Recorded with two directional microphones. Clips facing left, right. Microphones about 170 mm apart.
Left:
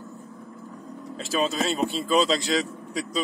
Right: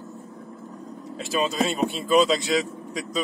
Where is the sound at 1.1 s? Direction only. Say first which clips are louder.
Right 1 dB; centre (ahead or behind).